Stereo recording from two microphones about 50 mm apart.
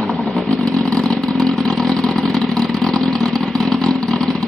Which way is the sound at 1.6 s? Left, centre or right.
Centre.